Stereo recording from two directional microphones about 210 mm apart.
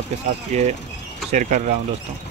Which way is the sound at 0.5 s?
30° right (ahead or behind).